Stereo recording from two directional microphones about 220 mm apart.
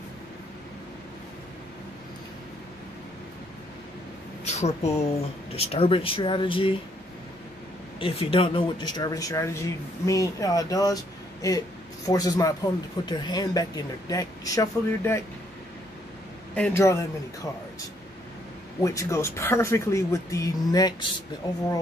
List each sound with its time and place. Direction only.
4.5 s speech: 30° left (ahead or behind)
8.0 s speech: 25° left (ahead or behind)
12.1 s speech: 15° left (ahead or behind)
16.5 s speech: 10° left (ahead or behind)
18.8 s speech: 15° left (ahead or behind)